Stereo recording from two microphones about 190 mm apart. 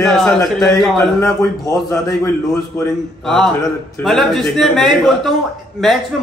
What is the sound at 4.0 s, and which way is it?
A man's voice, centre (ahead or behind).